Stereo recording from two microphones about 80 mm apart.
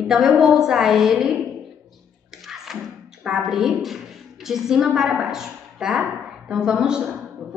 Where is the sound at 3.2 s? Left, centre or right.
Centre.